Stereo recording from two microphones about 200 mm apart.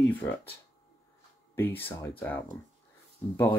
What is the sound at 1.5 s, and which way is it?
Speech, 10° left (ahead or behind).